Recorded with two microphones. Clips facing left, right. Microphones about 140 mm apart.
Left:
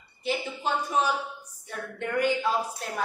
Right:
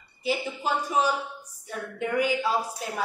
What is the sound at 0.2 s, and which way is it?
A woman's voice, 5° right (ahead or behind).